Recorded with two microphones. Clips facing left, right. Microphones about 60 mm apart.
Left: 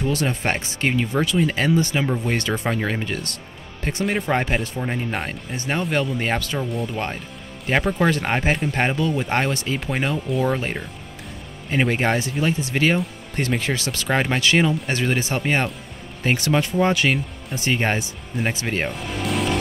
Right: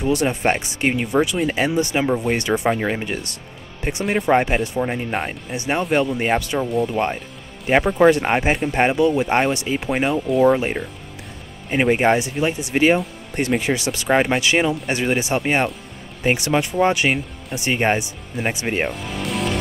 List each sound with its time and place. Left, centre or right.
0.0 s speech: centre
6.7 s speech: centre
18.9 s music: centre